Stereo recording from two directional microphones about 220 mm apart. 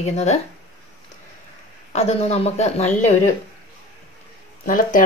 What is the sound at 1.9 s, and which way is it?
Speech, 30° left (ahead or behind).